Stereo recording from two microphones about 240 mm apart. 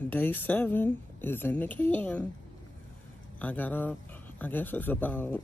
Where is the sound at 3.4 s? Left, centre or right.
Centre.